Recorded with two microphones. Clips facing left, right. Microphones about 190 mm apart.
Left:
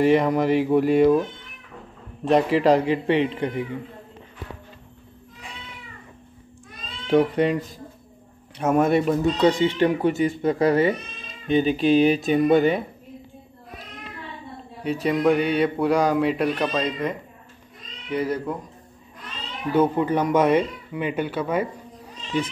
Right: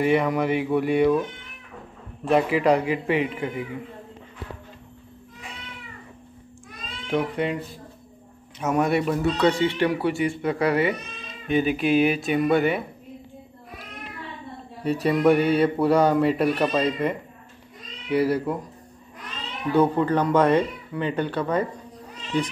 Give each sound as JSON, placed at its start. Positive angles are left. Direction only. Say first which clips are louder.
{"t": 0.0, "sound": "speech", "louder": "left 3 dB", "side_deg": 40}
{"t": 2.3, "sound": "speech", "louder": "left 2 dB", "side_deg": 40}
{"t": 7.1, "sound": "speech", "louder": "left 6 dB", "side_deg": 35}
{"t": 8.7, "sound": "speech", "louder": "left 3 dB", "side_deg": 40}
{"t": 9.1, "sound": "speech", "louder": "left 2 dB", "side_deg": 20}
{"t": 10.0, "sound": "speech", "louder": "left 3 dB", "side_deg": 40}
{"t": 12.4, "sound": "speech", "louder": "left 2 dB", "side_deg": 20}
{"t": 14.8, "sound": "speech", "louder": "right 1 dB", "side_deg": 0}
{"t": 19.7, "sound": "speech", "louder": "even", "side_deg": 10}